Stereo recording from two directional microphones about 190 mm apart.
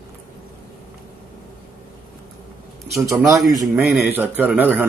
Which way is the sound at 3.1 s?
15° right (ahead or behind).